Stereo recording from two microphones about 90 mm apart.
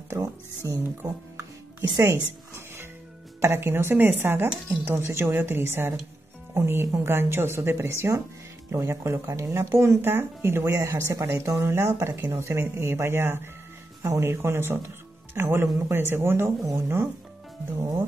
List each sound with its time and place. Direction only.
0.1 s speech: 35° right (ahead or behind)
2.0 s speech: 30° right (ahead or behind)